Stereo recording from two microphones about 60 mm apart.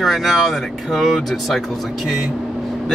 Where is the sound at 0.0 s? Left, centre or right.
Centre.